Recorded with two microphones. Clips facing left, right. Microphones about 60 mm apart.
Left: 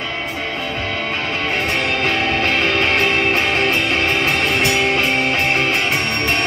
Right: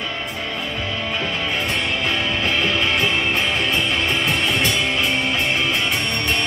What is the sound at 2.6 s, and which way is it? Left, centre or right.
Music, left.